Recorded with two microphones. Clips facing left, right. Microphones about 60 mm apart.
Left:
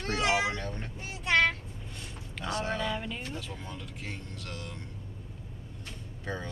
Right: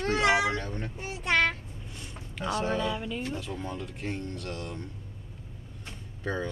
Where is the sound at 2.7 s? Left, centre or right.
Centre.